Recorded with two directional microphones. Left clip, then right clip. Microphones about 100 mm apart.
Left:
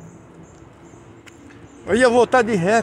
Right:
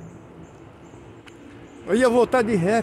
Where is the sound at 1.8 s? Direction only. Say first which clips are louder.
Left 3 dB; 10° left (ahead or behind).